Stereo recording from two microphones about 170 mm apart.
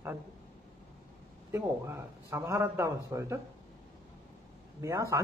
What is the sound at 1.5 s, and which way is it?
A man's voice, 15° right (ahead or behind).